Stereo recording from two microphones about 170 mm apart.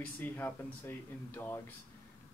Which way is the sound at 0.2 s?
10° left (ahead or behind).